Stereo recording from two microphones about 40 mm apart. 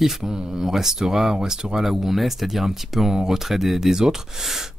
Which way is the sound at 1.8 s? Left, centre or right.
Centre.